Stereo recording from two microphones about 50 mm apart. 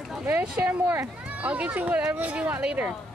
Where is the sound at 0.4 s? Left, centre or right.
Right.